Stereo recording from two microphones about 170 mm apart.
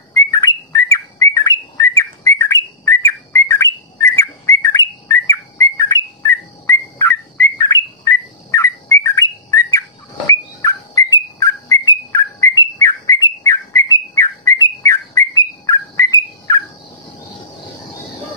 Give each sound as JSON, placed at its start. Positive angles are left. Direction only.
{"t": 0.1, "sound": "bird", "side_deg": 20}